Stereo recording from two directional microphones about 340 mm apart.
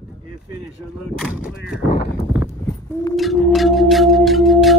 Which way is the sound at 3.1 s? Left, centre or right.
Centre.